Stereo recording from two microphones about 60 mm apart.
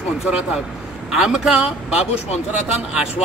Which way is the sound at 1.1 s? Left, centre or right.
Centre.